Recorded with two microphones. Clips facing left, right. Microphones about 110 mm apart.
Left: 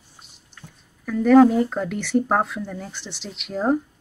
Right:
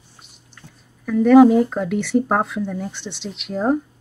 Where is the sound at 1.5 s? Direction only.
Centre (ahead or behind).